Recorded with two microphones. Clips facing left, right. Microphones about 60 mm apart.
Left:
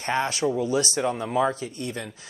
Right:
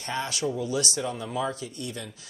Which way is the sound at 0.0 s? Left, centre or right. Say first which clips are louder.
Left 5 dB; left.